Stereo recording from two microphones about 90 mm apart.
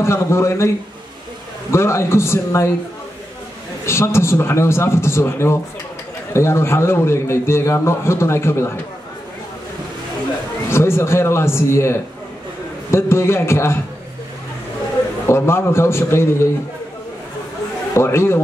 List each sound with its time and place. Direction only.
0.0 s a man's voice: 30° left (ahead or behind)
1.7 s a man's voice: 30° left (ahead or behind)
3.8 s a man's voice: 30° left (ahead or behind)
10.7 s a man's voice: 30° left (ahead or behind)
15.2 s a man's voice: 30° left (ahead or behind)
17.9 s a man's voice: 30° left (ahead or behind)